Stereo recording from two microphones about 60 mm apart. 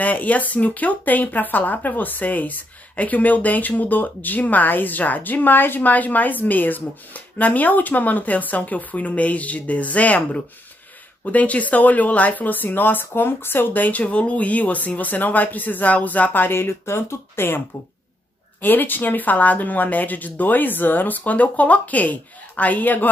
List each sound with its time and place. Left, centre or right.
0.0 s speech: left
18.6 s speech: left